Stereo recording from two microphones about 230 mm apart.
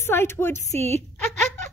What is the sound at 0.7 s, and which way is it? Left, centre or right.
Speech, right.